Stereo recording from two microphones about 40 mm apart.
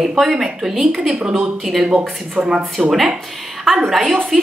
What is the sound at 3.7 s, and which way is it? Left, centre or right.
Speech, centre.